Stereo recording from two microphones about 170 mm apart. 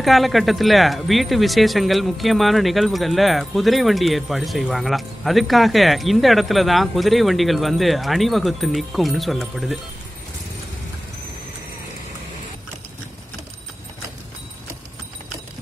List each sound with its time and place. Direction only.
0.0 s speech: centre (ahead or behind)